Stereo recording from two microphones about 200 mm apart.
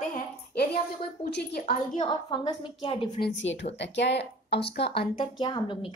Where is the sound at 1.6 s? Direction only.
45° left (ahead or behind).